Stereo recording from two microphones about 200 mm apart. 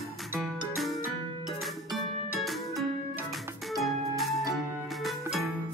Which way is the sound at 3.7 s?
Centre (ahead or behind).